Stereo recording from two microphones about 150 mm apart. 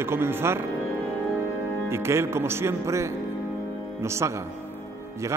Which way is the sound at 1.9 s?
15° right (ahead or behind).